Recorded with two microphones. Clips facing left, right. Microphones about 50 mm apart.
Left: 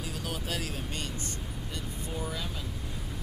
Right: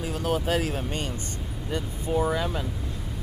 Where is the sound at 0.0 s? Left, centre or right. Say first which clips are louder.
Right 10 dB; right.